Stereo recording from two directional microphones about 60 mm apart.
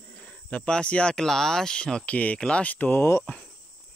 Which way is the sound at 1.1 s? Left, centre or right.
Centre.